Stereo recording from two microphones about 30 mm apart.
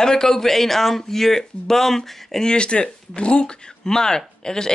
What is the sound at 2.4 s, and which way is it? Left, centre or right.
Speech, left.